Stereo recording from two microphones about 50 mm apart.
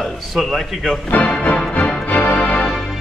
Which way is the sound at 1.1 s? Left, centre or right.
Left.